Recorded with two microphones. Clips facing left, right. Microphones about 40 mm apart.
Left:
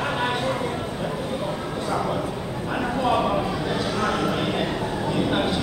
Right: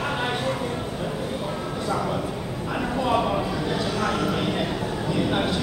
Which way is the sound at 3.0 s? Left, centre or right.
Centre.